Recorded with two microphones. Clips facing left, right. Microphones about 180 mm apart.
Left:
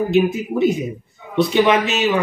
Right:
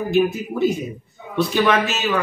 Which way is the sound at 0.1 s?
20° left (ahead or behind).